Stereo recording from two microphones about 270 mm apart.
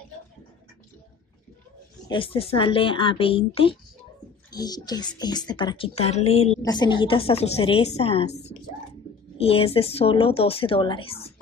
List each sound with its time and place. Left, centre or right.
2.0 s a woman's voice: centre
9.4 s a woman's voice: left